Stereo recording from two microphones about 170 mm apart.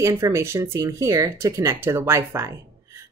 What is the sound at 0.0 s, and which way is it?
Speech, 20° right (ahead or behind).